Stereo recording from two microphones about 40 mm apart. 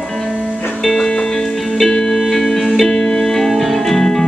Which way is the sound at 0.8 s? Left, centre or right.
Centre.